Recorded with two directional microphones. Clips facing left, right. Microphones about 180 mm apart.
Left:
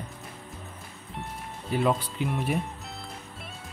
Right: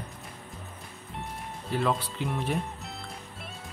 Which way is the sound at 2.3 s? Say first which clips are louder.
Left 1 dB; centre (ahead or behind).